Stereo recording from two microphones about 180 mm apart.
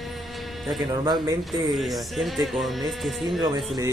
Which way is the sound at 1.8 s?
Centre (ahead or behind).